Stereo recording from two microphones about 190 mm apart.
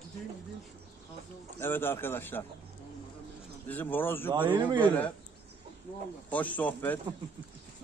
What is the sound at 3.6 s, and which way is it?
Speech, 10° left (ahead or behind).